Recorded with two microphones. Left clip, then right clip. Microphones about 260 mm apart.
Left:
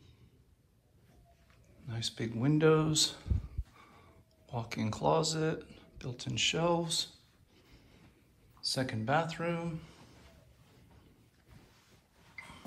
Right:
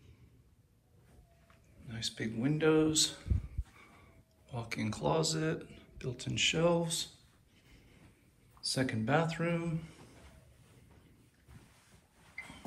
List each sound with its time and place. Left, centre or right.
1.9 s a man's voice: centre
4.5 s speech: centre
8.5 s speech: centre